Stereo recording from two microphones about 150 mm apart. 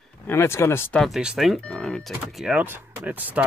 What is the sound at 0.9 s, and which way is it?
Speech, centre (ahead or behind).